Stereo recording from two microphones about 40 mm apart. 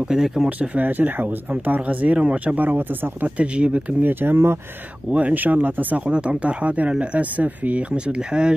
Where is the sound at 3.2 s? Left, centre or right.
Right.